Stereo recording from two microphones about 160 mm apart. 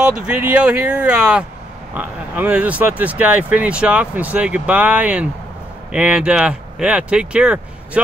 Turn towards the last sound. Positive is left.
turn(degrees=-5)  # may be behind; listen again after turning